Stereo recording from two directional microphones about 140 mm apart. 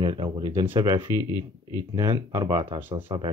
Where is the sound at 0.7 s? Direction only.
25° right (ahead or behind).